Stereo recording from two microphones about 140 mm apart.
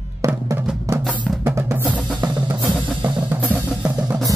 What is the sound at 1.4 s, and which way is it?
Drum kit, 15° right (ahead or behind).